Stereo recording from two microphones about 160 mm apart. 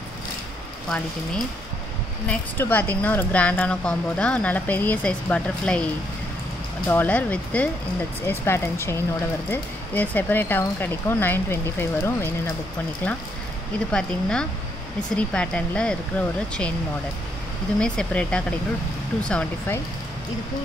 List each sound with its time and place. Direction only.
0.8 s a woman's voice: 5° left (ahead or behind)
6.9 s a woman's voice: 10° left (ahead or behind)
17.7 s a woman's voice: 5° left (ahead or behind)